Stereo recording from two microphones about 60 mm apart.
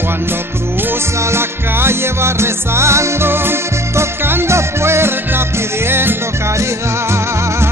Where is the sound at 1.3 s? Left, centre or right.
Right.